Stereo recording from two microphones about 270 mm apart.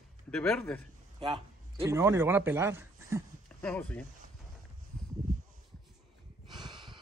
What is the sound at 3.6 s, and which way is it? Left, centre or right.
Speech, centre.